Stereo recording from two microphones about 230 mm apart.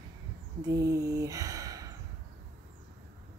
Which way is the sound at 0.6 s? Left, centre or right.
Centre.